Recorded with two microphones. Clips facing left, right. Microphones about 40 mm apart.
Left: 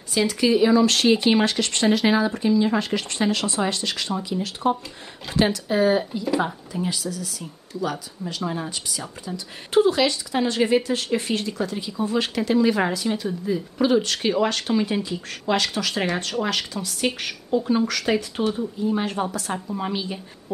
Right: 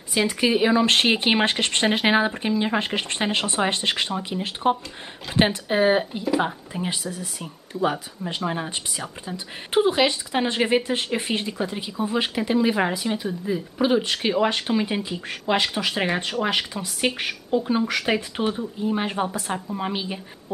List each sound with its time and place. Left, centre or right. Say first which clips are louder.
0.1 s speech: left 1 dB; right